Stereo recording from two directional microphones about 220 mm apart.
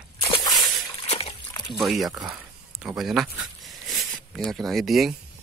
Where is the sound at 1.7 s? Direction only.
Centre (ahead or behind).